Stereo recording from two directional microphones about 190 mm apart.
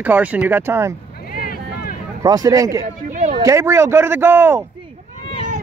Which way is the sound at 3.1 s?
40° right (ahead or behind).